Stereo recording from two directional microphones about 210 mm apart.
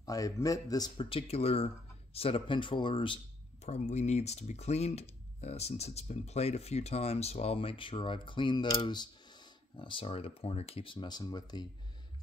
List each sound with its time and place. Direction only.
0.0 s speech: 15° left (ahead or behind)